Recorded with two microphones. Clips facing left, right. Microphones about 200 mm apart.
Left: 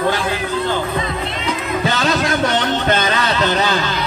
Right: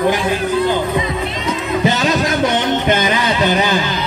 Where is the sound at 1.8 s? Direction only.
15° right (ahead or behind).